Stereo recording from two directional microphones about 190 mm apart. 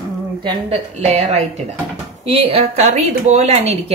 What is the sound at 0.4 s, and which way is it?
Speech, 25° right (ahead or behind).